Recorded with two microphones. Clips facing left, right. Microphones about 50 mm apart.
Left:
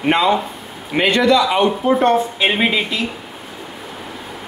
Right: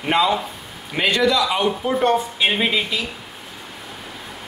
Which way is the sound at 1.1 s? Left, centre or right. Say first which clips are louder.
Left 5 dB; centre.